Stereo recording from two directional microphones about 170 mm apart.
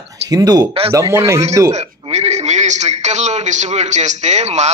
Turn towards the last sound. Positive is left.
turn(degrees=-40)  # may be behind; listen again after turning